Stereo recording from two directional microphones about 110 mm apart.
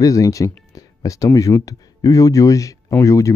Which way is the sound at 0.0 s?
30° left (ahead or behind).